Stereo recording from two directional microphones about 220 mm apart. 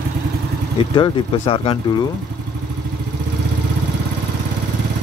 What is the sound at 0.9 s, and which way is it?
Speech, 20° left (ahead or behind).